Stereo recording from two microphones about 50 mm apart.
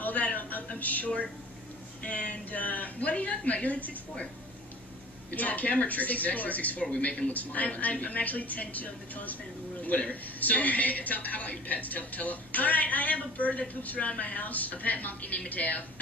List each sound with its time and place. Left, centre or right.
0.0 s a man's voice: left
5.3 s speech: left